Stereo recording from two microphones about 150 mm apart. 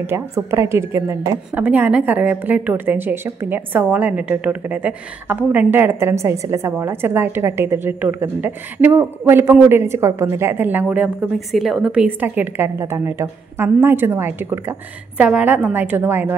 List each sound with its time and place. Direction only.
0.0 s a woman's voice: 15° right (ahead or behind)